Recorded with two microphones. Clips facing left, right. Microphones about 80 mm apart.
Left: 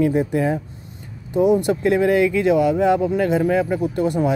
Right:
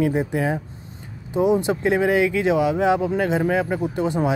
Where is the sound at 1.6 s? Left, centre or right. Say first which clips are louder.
Left 2 dB; right.